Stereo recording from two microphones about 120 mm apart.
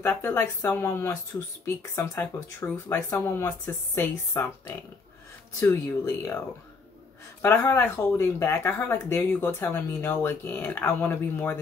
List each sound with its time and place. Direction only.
0.0 s speech: 20° left (ahead or behind)
2.1 s speech: 20° left (ahead or behind)
7.4 s speech: 20° left (ahead or behind)